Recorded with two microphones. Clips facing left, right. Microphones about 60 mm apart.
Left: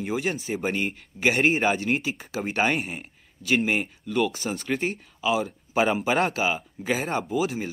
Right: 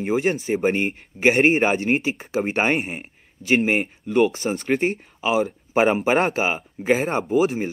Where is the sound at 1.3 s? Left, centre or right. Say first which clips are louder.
Right 4 dB; right.